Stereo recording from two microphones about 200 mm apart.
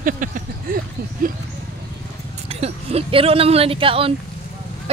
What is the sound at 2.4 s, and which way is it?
Speech, 30° right (ahead or behind).